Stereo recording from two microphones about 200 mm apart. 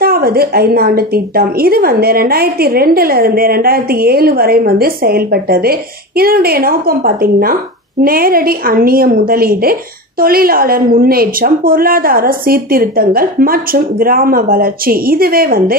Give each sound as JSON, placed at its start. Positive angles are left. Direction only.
{"t": 0.0, "sound": "a woman's voice", "side_deg": -50}